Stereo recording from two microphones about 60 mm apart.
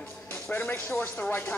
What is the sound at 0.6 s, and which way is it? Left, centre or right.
Speech, left.